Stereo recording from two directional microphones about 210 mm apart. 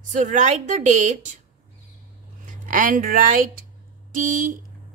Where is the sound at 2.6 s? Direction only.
40° right (ahead or behind).